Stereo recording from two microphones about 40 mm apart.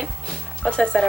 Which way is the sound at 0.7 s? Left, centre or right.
Left.